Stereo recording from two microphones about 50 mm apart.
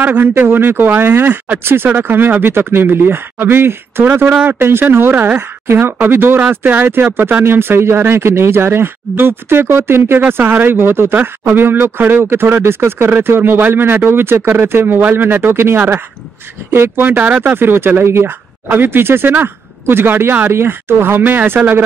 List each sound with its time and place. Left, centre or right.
0.0 s speech: right
1.1 s speech: right
1.6 s speech: right
17.4 s speech: right